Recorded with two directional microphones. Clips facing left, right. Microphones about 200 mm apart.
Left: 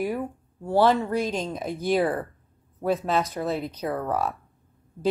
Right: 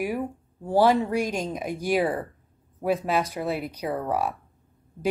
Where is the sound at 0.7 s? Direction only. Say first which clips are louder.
Even; 15° right (ahead or behind).